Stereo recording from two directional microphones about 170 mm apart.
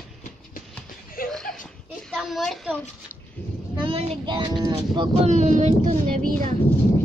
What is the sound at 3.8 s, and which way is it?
Speech, 35° right (ahead or behind).